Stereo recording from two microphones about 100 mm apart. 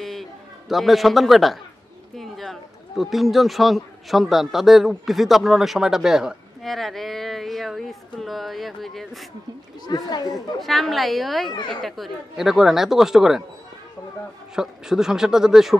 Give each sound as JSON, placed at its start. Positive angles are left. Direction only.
{"t": 0.0, "sound": "a sound", "side_deg": 0}
{"t": 2.1, "sound": "speech", "side_deg": 0}
{"t": 9.8, "sound": "speech", "side_deg": 40}
{"t": 10.3, "sound": "speech", "side_deg": 0}
{"t": 14.5, "sound": "speech", "side_deg": -5}